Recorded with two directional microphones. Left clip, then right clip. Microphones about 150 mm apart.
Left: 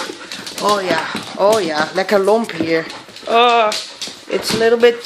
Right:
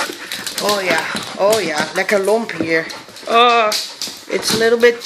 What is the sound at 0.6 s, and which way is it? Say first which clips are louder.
Speech: left 1 dB; 10° left (ahead or behind).